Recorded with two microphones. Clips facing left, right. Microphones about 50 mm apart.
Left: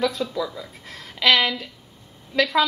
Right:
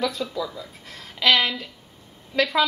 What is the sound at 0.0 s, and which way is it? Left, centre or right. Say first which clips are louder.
A woman's voice: left 2 dB; centre.